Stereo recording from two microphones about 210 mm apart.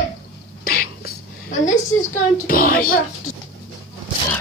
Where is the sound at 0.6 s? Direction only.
45° left (ahead or behind).